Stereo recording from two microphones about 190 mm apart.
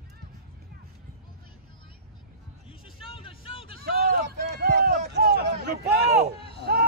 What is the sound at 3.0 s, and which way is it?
Vehicle, 30° left (ahead or behind).